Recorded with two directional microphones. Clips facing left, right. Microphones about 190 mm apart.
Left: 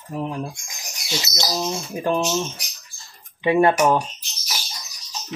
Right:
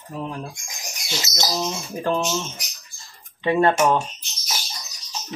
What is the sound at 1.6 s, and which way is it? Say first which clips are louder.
Speech: left 1 dB; 10° left (ahead or behind).